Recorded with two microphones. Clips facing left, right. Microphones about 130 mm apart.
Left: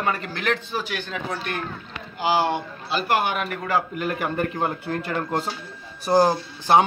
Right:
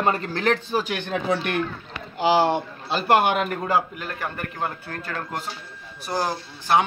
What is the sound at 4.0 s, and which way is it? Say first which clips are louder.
Speech: left 6 dB; 10° left (ahead or behind).